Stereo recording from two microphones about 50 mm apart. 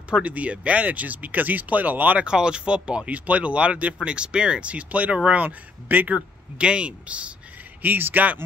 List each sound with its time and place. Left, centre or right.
0.2 s speech: right
2.2 s speech: centre; by 6.1 s right
6.1 s speech: centre
7.8 s speech: right